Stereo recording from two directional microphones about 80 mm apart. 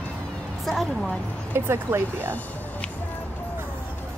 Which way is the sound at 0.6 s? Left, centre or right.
Centre.